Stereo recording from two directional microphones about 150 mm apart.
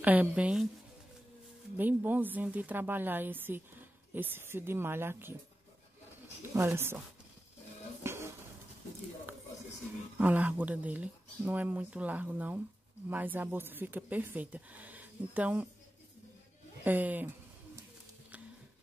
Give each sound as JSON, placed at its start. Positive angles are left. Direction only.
{"t": 0.0, "sound": "speech", "side_deg": -10}
{"t": 1.8, "sound": "speech", "side_deg": -10}
{"t": 6.5, "sound": "speech", "side_deg": -15}
{"t": 8.0, "sound": "a sound", "side_deg": -15}
{"t": 9.3, "sound": "a sound", "side_deg": -10}
{"t": 10.1, "sound": "speech", "side_deg": -10}
{"t": 16.8, "sound": "speech", "side_deg": -10}